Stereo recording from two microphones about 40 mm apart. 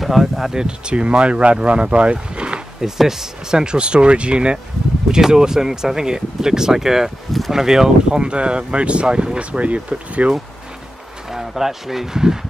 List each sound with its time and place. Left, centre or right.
0.0 s speech: centre
0.5 s speech: centre
2.8 s speech: centre; by 4.6 s right
5.3 s speech: centre; by 10.3 s right
11.2 s speech: centre